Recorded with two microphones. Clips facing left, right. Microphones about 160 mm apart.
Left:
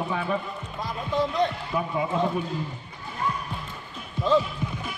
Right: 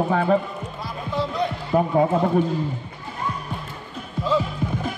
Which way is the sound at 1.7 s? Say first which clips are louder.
Right 8 dB; 45° right (ahead or behind).